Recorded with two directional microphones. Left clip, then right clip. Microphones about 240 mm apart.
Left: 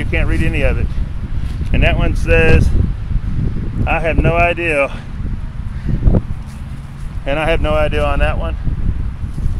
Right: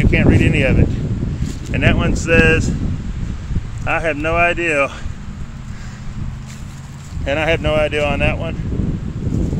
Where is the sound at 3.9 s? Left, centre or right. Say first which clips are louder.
Left 1 dB; centre.